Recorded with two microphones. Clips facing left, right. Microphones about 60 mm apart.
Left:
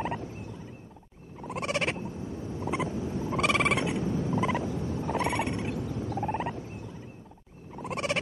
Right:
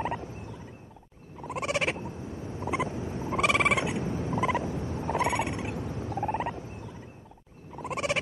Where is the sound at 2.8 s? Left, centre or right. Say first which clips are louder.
Left 1 dB; right.